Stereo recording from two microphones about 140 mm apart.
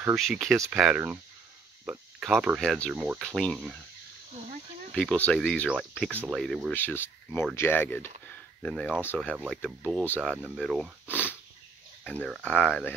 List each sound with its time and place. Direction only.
0.1 s speech: centre (ahead or behind)
4.9 s speech: 10° left (ahead or behind)
6.7 s speech: 15° left (ahead or behind)
8.3 s a sound: 5° left (ahead or behind)
9.0 s speech: 10° left (ahead or behind)
9.5 s speech: centre (ahead or behind)
11.1 s sniff: 15° left (ahead or behind)
12.0 s speech: 5° left (ahead or behind)